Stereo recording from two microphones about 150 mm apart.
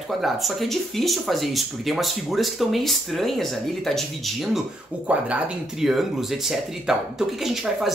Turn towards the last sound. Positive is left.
turn(degrees=0)  # may be behind; listen again after turning